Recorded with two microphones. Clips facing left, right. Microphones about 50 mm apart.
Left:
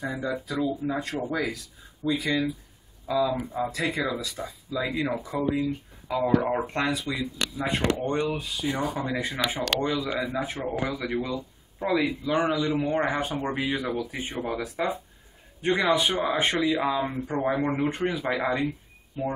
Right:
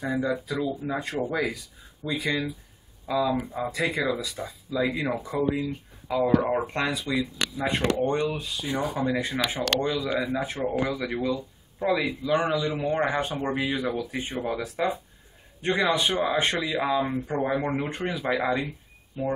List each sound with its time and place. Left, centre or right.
0.0 s speech: centre